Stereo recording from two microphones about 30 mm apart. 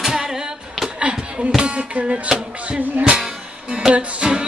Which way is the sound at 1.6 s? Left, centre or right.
Right.